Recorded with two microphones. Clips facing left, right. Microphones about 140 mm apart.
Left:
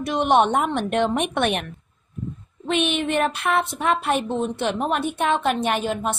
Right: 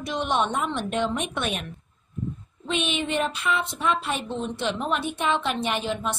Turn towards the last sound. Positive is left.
turn(degrees=50)  # may be behind; listen again after turning